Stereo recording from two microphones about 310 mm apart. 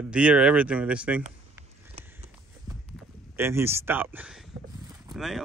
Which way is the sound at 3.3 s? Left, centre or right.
Centre.